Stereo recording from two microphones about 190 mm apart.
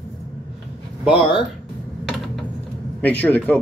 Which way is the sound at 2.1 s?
Centre (ahead or behind).